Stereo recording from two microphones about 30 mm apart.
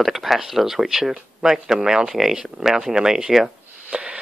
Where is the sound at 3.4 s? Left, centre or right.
Right.